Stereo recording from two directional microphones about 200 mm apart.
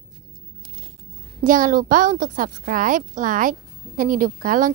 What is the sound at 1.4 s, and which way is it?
A woman's voice, 40° right (ahead or behind).